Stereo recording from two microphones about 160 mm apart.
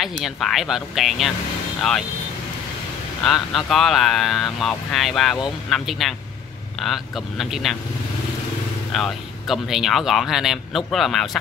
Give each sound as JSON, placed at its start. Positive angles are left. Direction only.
{"t": 0.0, "sound": "speech", "side_deg": 0}
{"t": 3.3, "sound": "speech", "side_deg": 0}
{"t": 8.9, "sound": "speech", "side_deg": 0}